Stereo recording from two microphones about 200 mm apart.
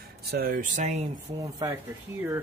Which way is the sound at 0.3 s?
50° right (ahead or behind).